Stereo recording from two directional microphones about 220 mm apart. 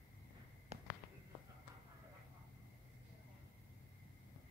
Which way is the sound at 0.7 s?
30° right (ahead or behind).